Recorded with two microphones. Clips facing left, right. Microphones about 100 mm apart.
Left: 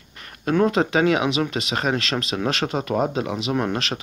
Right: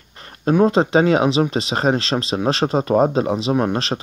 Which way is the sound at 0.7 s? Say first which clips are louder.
Right 3 dB; 30° right (ahead or behind).